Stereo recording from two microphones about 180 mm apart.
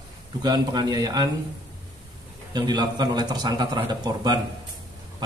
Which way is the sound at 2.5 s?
25° right (ahead or behind).